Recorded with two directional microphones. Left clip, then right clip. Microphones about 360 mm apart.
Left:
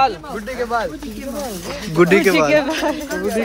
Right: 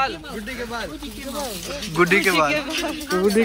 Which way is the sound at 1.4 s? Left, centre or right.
Left.